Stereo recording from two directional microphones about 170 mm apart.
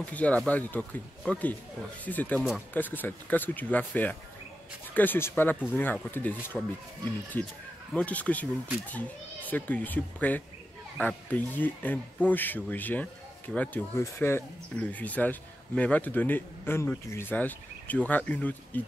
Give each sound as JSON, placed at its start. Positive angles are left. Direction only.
{"t": 0.0, "sound": "speech", "side_deg": 10}
{"t": 9.5, "sound": "speech", "side_deg": 10}